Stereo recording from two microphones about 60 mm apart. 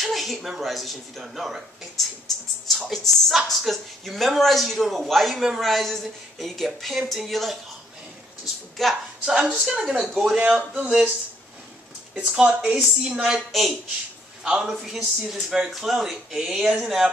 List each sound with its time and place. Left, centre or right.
0.0 s a sound: centre
0.5 s a woman's voice: centre
8.8 s a woman's voice: centre
9.2 s a man's voice: centre
10.3 s a man's voice: centre
12.1 s a man's voice: centre
13.5 s a woman's voice: centre
14.4 s a man's voice: centre